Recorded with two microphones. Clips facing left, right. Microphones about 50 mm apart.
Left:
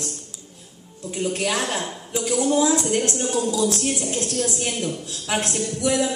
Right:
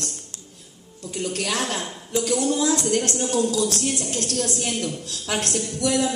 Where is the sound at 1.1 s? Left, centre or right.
Centre.